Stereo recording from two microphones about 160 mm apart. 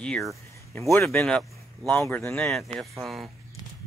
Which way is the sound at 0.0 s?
5° left (ahead or behind).